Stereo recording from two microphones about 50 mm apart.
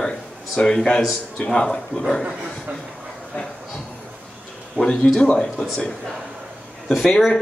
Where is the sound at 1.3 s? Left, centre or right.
Left.